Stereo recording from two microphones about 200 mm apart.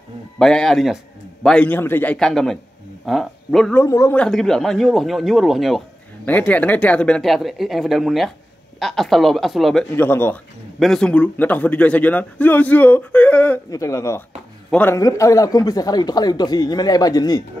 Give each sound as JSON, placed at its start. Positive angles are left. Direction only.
{"t": 0.4, "sound": "speech", "side_deg": 0}
{"t": 3.8, "sound": "speech", "side_deg": 15}